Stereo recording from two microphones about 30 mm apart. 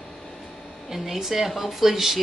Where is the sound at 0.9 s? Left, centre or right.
Centre.